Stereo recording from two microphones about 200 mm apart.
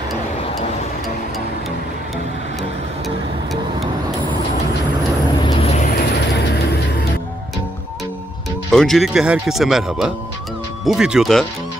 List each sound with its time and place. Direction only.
5.4 s vehicle: 25° left (ahead or behind)
5.9 s music: 55° left (ahead or behind)
8.7 s speech: centre (ahead or behind)